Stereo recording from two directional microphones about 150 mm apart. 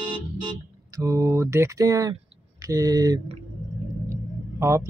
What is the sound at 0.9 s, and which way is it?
Speech, 20° right (ahead or behind).